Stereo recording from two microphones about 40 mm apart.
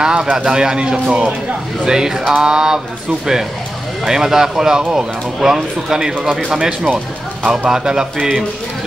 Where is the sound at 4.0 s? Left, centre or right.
Centre.